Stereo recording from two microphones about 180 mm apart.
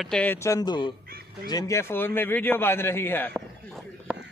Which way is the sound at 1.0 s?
60° right (ahead or behind).